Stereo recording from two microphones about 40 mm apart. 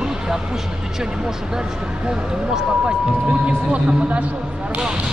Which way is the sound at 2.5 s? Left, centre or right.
Centre.